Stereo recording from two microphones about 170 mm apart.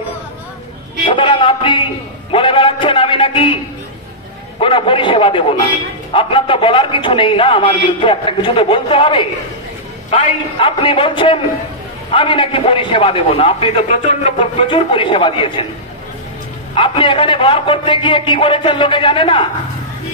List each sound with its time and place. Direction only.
1.0 s a sound: 30° left (ahead or behind)
4.6 s a man's voice: 30° left (ahead or behind)
10.6 s a man's voice: 30° left (ahead or behind)
16.7 s a man's voice: 30° left (ahead or behind)